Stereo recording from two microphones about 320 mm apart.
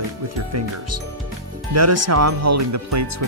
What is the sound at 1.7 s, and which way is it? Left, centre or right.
Speech, right.